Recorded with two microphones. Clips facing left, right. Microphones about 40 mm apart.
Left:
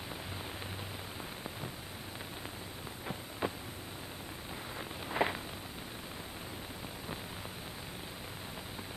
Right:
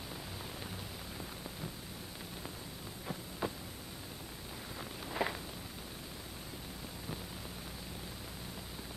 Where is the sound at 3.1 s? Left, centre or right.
Left.